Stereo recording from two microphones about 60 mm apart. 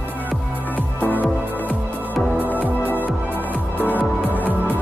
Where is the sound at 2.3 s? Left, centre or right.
Left.